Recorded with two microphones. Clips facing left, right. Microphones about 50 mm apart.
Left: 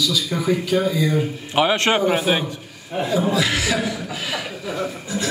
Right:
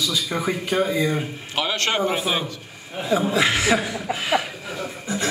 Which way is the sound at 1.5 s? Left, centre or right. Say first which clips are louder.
Left 6 dB; left.